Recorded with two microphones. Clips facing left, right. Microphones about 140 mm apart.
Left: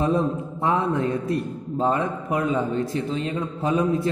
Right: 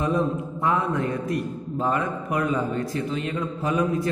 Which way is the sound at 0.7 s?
25° left (ahead or behind).